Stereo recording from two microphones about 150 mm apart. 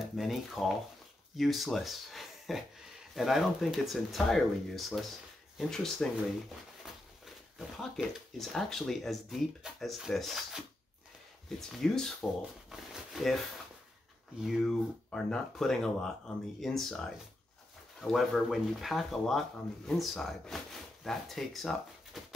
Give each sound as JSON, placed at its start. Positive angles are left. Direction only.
{"t": 0.0, "sound": "speech", "side_deg": 0}
{"t": 7.2, "sound": "speech", "side_deg": 0}
{"t": 14.4, "sound": "speech", "side_deg": 0}
{"t": 18.0, "sound": "speech", "side_deg": 0}